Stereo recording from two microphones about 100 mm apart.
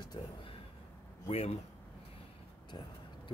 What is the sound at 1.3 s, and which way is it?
Speech, 90° left.